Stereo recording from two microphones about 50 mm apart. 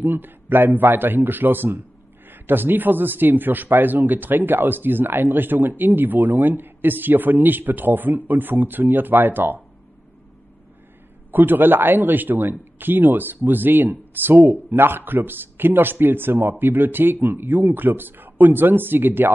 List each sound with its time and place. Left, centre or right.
0.0 s a man's voice: right
11.3 s speech: right